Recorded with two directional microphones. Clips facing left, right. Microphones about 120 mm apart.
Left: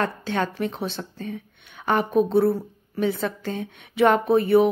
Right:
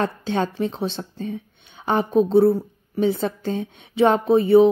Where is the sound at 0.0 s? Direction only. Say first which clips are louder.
Right 2 dB; 25° right (ahead or behind).